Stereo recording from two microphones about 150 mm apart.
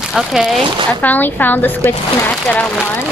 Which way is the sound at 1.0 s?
10° left (ahead or behind).